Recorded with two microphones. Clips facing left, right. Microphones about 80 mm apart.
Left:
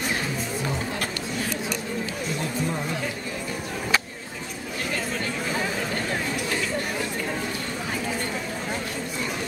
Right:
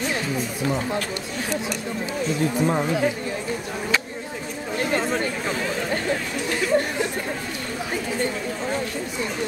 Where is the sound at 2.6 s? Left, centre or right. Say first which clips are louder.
Right 7 dB; right.